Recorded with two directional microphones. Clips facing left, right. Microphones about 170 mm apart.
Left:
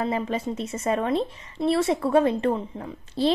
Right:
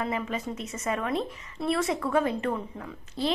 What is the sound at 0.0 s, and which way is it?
Speech, 30° left (ahead or behind).